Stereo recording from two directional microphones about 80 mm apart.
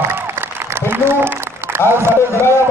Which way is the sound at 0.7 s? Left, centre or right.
Right.